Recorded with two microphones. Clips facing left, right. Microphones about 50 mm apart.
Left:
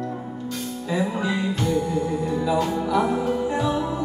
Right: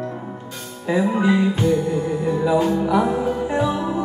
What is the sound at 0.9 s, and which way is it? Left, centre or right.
Music, right.